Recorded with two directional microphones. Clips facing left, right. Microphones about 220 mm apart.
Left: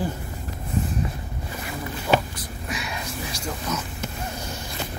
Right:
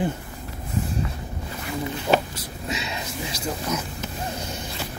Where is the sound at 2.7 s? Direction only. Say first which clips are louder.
Right 1 dB; 25° right (ahead or behind).